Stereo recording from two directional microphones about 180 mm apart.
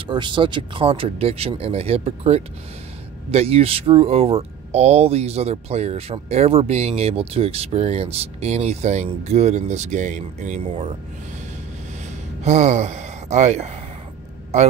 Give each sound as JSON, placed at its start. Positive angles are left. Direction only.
{"t": 0.0, "sound": "speech", "side_deg": -25}
{"t": 12.4, "sound": "speech", "side_deg": -40}